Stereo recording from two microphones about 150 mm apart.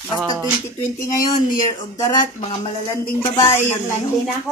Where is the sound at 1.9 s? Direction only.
25° left (ahead or behind).